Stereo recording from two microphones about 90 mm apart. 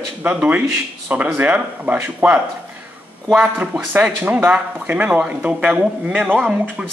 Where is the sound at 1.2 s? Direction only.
20° right (ahead or behind).